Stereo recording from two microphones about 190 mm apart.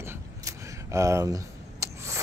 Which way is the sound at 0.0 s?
15° right (ahead or behind).